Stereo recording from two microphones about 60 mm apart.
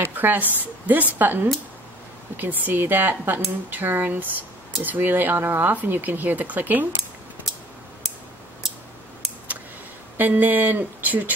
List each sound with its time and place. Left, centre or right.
0.0 s speech: right
10.1 s speech: right